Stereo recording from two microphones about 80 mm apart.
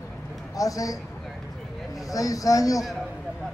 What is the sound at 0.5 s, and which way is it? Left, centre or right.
Speech, left.